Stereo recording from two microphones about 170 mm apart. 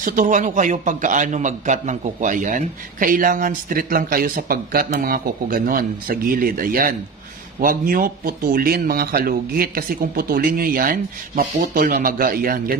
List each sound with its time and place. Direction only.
0.0 s a man's voice: 45° right (ahead or behind)